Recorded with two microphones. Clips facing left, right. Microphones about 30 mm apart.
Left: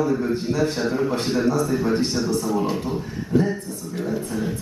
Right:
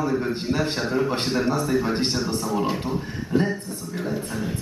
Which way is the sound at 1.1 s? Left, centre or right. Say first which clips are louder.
Left 2 dB; right.